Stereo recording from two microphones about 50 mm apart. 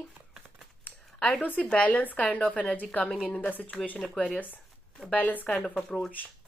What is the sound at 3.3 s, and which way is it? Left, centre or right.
Speech, left.